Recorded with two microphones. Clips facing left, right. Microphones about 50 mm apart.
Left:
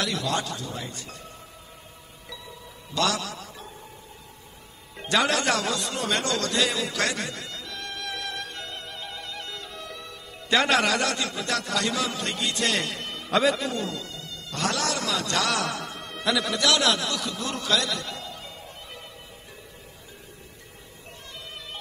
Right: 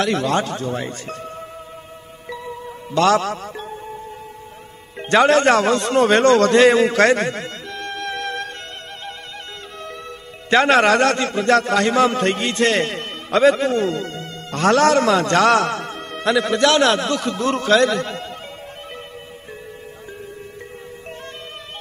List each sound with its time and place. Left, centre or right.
0.0 s speech: right
2.2 s music: right
5.0 s a man's voice: right
9.8 s a man's voice: right